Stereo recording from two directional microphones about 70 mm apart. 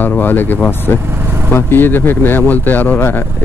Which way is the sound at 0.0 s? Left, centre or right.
Left.